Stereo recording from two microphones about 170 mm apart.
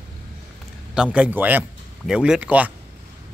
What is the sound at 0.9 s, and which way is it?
Speech, 5° right (ahead or behind).